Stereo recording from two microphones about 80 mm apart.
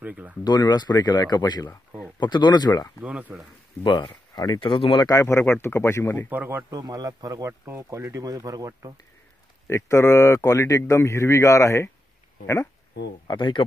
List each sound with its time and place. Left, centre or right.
0.0 s speech: centre
0.4 s speech: left
3.0 s speech: centre
3.8 s speech: left
5.0 s speech: left
6.2 s speech: right
6.7 s speech: right
7.4 s speech: right
9.7 s speech: left
13.3 s speech: left